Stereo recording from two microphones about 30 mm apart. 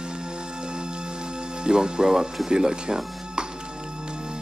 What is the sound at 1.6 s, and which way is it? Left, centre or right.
Speech, right.